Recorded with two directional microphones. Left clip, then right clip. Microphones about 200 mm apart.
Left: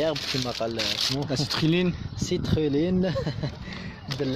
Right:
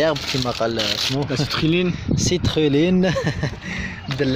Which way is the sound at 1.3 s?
35° left (ahead or behind).